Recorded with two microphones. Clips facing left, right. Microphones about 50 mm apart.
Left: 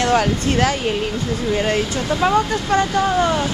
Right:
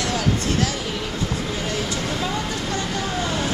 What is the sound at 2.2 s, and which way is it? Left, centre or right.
Speech, left.